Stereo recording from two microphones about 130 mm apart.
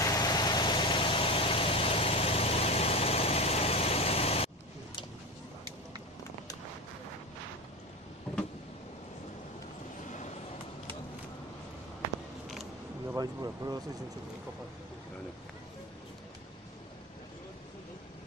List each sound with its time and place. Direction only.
0.0 s vehicle: 30° left (ahead or behind); by 4.5 s 50° left (ahead or behind)
10.0 s vehicle: 70° left (ahead or behind)
13.1 s speech: 30° right (ahead or behind)